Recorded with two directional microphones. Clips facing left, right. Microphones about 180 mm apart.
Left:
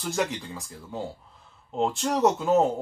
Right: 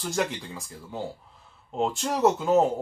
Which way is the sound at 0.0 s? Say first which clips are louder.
Even; centre (ahead or behind).